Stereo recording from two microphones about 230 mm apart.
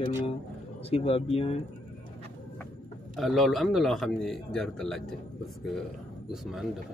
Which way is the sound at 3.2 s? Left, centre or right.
Centre.